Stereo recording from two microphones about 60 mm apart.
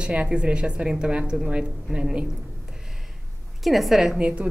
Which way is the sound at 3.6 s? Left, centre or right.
Centre.